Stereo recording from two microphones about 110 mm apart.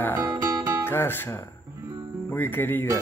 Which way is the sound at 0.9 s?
20° left (ahead or behind).